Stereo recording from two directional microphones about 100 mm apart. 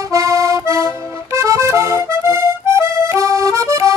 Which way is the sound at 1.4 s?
30° right (ahead or behind).